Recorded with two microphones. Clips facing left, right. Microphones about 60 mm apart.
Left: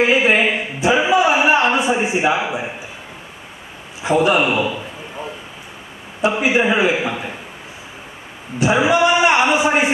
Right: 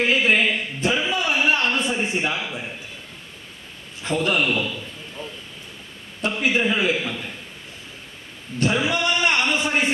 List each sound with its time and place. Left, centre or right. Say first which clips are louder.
0.0 s a sound: left 5 dB; centre
4.0 s a man's voice: left 7 dB; centre
6.2 s a man's voice: left 6 dB; centre
8.5 s a man's voice: left 7 dB; centre